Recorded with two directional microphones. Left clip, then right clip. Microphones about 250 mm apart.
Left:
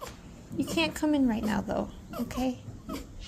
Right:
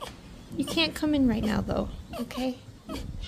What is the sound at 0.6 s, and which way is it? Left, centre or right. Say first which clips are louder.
Speech: right 2 dB; centre.